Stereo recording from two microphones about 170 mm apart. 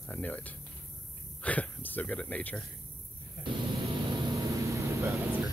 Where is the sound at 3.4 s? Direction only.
60° left (ahead or behind).